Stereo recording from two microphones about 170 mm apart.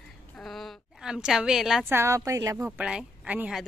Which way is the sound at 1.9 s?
15° right (ahead or behind).